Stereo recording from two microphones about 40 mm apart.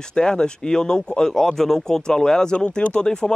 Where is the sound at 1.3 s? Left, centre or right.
Centre.